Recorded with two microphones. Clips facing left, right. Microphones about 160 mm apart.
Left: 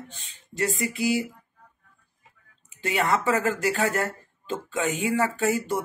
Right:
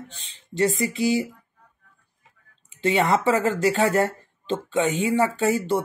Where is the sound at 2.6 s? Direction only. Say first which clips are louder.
Right 4 dB; 25° right (ahead or behind).